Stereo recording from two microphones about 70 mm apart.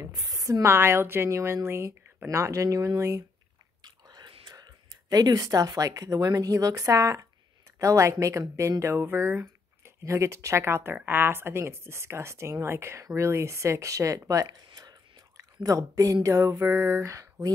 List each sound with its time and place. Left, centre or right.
0.0 s a sound: right
0.4 s a woman's voice: right
3.8 s chewing: right
5.1 s speech: right
6.1 s a woman's voice: right
16.3 s a woman's voice: right
17.0 s speech: right